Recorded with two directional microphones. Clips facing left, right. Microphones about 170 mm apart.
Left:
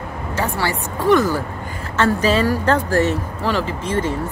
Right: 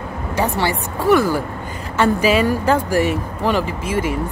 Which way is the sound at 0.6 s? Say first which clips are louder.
Right 2 dB; 10° right (ahead or behind).